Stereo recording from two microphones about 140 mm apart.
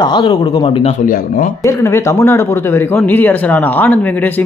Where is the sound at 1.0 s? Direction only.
80° left.